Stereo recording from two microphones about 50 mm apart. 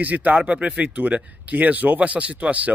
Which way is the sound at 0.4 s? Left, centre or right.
Right.